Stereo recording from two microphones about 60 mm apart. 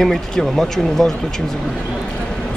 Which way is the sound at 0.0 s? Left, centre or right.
Centre.